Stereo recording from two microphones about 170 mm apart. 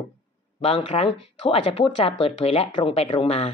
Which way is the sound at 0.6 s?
35° left (ahead or behind).